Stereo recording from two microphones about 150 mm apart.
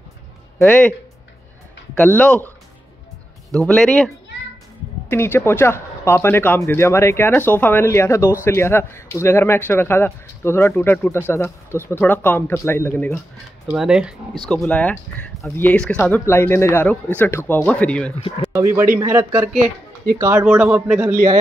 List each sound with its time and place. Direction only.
0.7 s speech: 10° left (ahead or behind)
2.0 s speech: 10° left (ahead or behind)
3.5 s speech: 5° left (ahead or behind)
5.1 s speech: 15° left (ahead or behind)
13.7 s a man's voice: 5° right (ahead or behind)
14.5 s speech: 10° left (ahead or behind)
18.5 s a man's voice: 20° right (ahead or behind)